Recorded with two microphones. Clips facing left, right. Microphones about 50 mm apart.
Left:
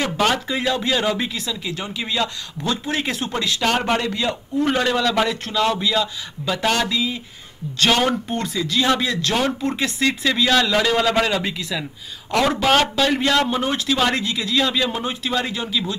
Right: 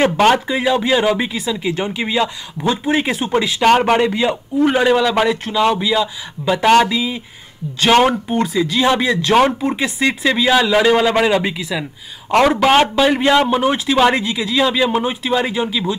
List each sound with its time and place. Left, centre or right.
0.0 s speech: right
0.5 s a man's voice: centre
1.6 s a man's voice: right
8.1 s a man's voice: centre